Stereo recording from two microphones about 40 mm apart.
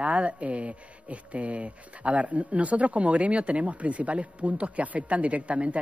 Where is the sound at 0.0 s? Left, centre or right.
Right.